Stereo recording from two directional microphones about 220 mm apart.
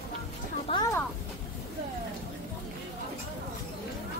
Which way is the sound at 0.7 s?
20° left (ahead or behind).